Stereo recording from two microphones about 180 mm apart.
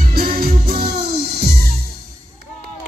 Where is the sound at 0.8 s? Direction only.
40° right (ahead or behind).